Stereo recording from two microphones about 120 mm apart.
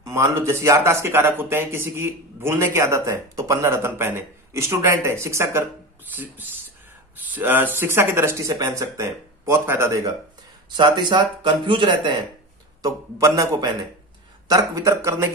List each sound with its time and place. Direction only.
0.0 s a man's voice: 25° right (ahead or behind)
10.8 s speech: 40° right (ahead or behind)
12.8 s a man's voice: 30° right (ahead or behind)